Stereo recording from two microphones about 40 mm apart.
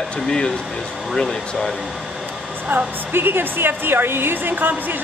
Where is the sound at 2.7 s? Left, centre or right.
Right.